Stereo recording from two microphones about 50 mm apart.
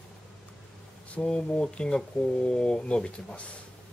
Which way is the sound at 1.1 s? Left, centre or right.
Left.